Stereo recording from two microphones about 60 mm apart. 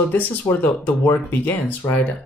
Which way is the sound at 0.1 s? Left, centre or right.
Left.